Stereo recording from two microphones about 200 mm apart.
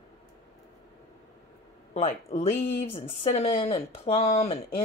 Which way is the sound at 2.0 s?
35° left (ahead or behind).